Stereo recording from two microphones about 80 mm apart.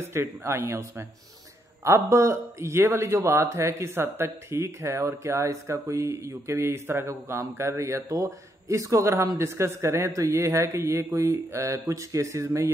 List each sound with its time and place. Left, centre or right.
0.0 s speech: right